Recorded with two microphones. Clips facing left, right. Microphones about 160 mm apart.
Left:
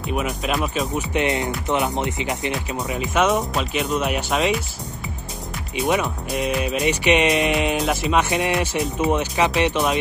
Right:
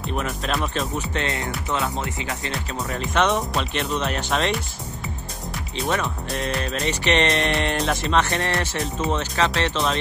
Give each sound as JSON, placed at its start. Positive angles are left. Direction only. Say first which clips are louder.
{"t": 0.0, "sound": "speech", "louder": "left 3 dB", "side_deg": 5}
{"t": 2.9, "sound": "speech", "louder": "left 2 dB", "side_deg": 5}
{"t": 5.8, "sound": "speech", "louder": "left 4 dB", "side_deg": 10}